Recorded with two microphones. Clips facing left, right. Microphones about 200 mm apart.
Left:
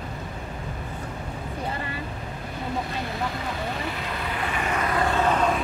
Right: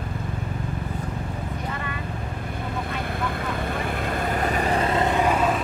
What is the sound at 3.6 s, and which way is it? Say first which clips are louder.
Vehicle: right 3 dB; 50° right (ahead or behind).